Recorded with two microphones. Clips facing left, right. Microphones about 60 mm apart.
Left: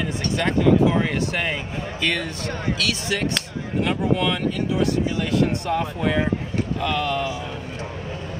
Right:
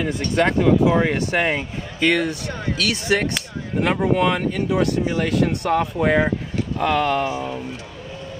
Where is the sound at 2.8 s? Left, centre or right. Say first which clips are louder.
Right 6 dB; right.